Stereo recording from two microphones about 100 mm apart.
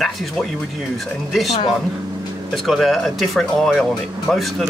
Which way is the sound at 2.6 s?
Centre (ahead or behind).